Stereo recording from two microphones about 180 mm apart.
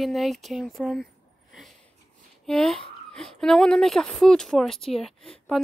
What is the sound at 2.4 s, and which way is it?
Speech, centre (ahead or behind).